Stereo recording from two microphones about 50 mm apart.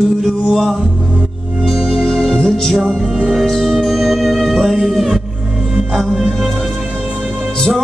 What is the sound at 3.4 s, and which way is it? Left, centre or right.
Music, centre.